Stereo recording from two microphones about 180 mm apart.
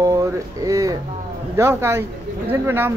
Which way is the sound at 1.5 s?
15° right (ahead or behind).